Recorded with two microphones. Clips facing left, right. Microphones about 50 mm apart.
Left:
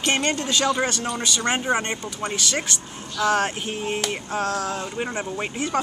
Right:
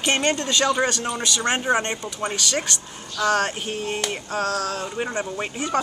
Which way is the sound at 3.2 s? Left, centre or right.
Centre.